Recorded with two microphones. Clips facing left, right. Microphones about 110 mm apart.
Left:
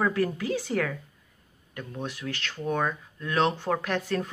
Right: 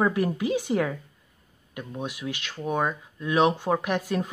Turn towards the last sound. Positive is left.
turn(degrees=-15)  # may be behind; listen again after turning